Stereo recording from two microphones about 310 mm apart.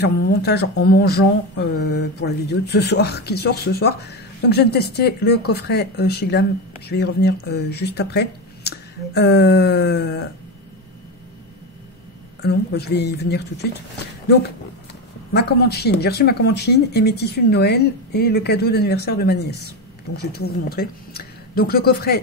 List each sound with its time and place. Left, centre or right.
0.0 s speech: left
12.4 s speech: left
15.3 s speech: left